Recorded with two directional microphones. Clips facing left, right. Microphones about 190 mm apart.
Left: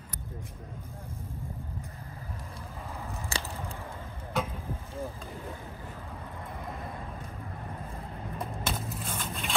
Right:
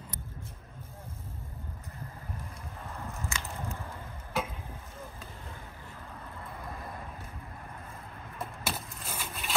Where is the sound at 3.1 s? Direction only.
35° left (ahead or behind).